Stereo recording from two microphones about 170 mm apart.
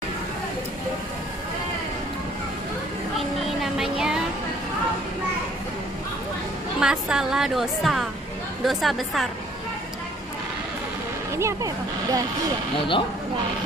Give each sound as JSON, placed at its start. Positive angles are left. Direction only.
{"t": 3.6, "sound": "music", "side_deg": 0}
{"t": 6.8, "sound": "a woman's voice", "side_deg": -5}
{"t": 11.3, "sound": "speech", "side_deg": -20}